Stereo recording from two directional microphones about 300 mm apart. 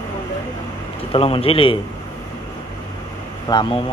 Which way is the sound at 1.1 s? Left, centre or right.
Centre.